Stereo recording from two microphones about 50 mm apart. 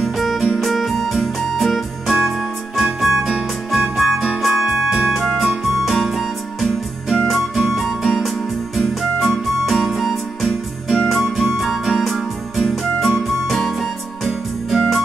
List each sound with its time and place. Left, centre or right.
0.0 s music: centre